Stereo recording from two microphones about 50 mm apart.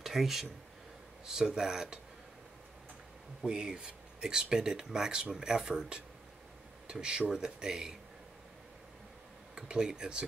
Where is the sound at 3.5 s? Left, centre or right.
Centre.